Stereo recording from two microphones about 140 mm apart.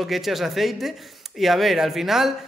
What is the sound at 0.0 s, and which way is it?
Speech, centre (ahead or behind).